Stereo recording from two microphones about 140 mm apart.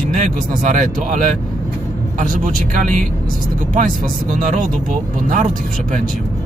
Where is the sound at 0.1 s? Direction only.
65° right (ahead or behind).